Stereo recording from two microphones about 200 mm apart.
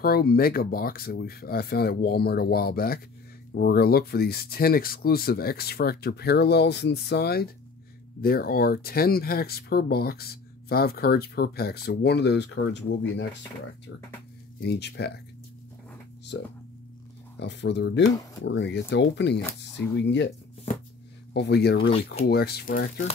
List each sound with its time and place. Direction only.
0.0 s speech: 50° left (ahead or behind); by 13.2 s 65° left (ahead or behind)
14.6 s speech: 55° left (ahead or behind)
16.3 s speech: 65° left (ahead or behind)